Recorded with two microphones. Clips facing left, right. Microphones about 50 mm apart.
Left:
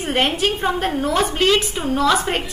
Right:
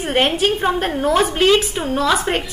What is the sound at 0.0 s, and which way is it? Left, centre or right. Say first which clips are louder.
A woman's voice: right 2 dB; centre.